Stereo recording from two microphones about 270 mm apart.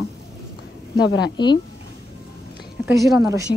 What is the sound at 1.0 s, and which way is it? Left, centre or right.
Speech, left.